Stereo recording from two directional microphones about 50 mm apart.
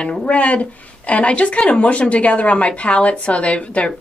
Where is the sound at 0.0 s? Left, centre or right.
Left.